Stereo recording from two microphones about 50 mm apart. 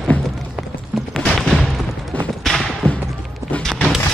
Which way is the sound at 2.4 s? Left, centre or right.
Centre.